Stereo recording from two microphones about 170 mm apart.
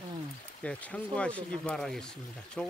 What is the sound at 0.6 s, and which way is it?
Speech, 5° left (ahead or behind).